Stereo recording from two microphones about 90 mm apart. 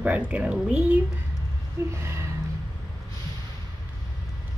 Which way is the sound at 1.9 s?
35° right (ahead or behind).